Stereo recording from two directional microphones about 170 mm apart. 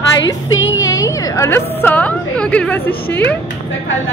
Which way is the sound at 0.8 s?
20° left (ahead or behind).